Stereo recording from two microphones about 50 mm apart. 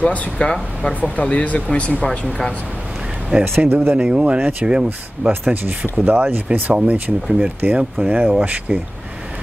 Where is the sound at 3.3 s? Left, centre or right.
Right.